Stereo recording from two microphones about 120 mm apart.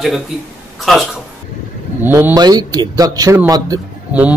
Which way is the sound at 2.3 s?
35° right (ahead or behind).